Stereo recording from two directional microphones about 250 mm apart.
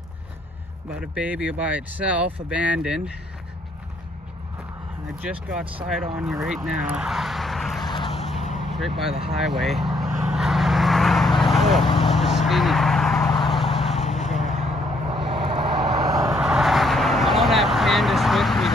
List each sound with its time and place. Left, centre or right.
1.1 s speech: centre
5.3 s speech: centre
7.8 s vehicle: centre
8.7 s speech: centre
9.2 s vehicle: centre
15.0 s vehicle: right
15.9 s vehicle: centre